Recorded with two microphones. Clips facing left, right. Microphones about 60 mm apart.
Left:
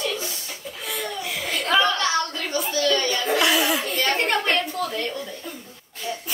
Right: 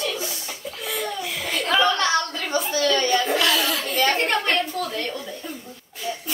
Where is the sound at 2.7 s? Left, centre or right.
Right.